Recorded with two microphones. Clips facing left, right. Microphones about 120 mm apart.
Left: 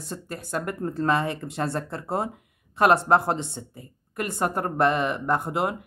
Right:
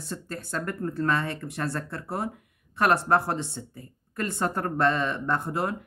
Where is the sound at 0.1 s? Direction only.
15° left (ahead or behind).